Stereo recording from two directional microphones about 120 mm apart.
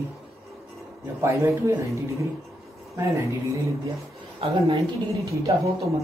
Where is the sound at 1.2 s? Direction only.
25° right (ahead or behind).